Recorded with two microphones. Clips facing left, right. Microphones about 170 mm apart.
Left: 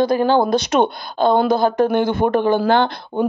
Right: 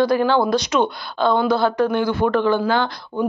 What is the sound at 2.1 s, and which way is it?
Speech, 20° left (ahead or behind).